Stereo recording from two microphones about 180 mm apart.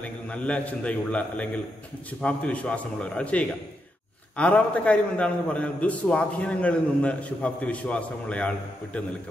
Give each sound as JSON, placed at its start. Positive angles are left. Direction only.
{"t": 0.0, "sound": "a man's voice", "side_deg": 10}